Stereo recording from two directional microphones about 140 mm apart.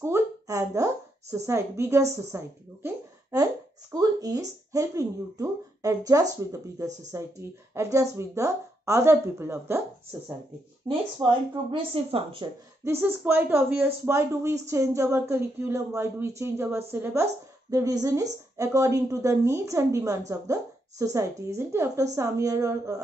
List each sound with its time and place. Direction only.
0.0 s a sound: 20° right (ahead or behind)
1.3 s speech: 20° right (ahead or behind)
2.3 s a sound: 20° right (ahead or behind)
3.9 s speech: 25° right (ahead or behind)
10.9 s speech: 40° right (ahead or behind)
12.8 s speech: 15° right (ahead or behind)